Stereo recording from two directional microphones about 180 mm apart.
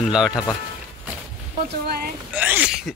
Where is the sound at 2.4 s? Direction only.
5° right (ahead or behind).